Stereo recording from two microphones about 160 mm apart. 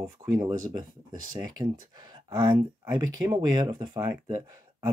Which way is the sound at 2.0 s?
25° right (ahead or behind).